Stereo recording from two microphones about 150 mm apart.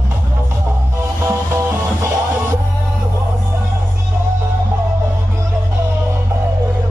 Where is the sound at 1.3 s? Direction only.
20° right (ahead or behind).